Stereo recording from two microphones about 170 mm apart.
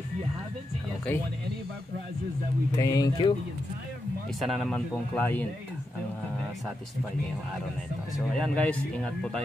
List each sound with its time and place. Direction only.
2.8 s speech: 20° left (ahead or behind)
4.4 s speech: centre (ahead or behind)
8.3 s speech: 5° left (ahead or behind)